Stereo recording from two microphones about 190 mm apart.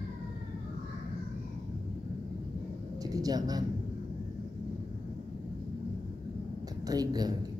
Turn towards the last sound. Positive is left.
turn(degrees=-20)  # may be behind; listen again after turning